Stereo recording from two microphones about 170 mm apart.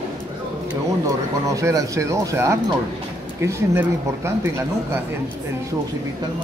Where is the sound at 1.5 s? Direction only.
20° right (ahead or behind).